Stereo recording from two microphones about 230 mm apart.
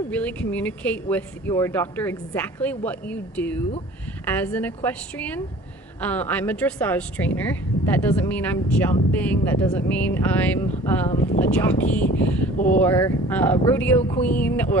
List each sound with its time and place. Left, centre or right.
0.1 s speech: centre